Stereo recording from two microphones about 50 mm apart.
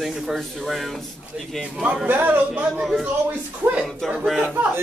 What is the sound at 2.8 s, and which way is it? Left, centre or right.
Speech, centre.